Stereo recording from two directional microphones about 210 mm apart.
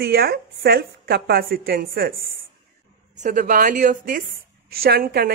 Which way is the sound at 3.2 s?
40° right (ahead or behind).